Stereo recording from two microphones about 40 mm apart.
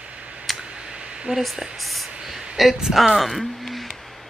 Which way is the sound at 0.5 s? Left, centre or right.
Centre.